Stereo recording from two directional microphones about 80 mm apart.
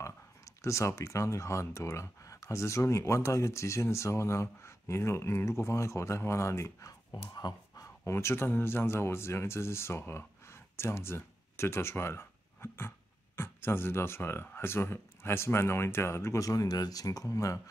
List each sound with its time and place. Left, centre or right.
0.7 s speech: left
7.3 s a sound: left
8.0 s speech: left